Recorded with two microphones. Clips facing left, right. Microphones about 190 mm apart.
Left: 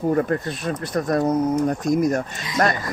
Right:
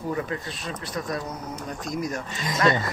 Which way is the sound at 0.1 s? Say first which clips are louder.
Left 8 dB; 50° left (ahead or behind).